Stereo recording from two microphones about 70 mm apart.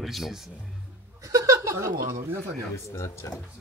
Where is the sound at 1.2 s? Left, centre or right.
Right.